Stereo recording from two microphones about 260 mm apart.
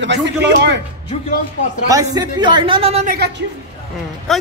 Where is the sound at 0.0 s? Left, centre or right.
Right.